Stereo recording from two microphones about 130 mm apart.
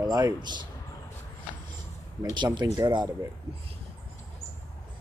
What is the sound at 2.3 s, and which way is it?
Speech, 35° right (ahead or behind).